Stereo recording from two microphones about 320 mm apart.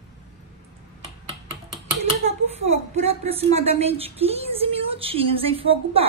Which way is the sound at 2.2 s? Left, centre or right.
Right.